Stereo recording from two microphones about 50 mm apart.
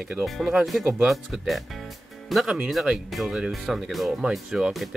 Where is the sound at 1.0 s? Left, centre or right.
Centre.